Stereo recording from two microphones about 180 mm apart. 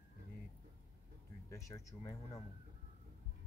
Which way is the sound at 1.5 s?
15° left (ahead or behind).